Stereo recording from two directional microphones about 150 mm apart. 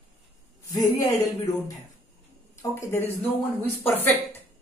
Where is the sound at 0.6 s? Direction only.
20° left (ahead or behind).